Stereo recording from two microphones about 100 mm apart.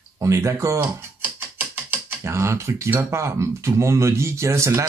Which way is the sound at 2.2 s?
30° right (ahead or behind).